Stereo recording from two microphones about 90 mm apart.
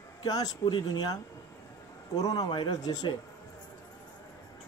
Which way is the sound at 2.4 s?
55° left (ahead or behind).